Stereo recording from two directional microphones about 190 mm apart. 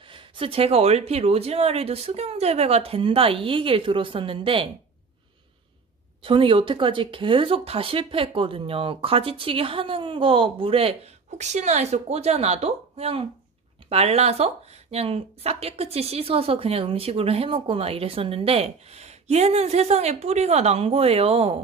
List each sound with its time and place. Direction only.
0.1 s speech: 30° right (ahead or behind)
6.2 s speech: 25° right (ahead or behind)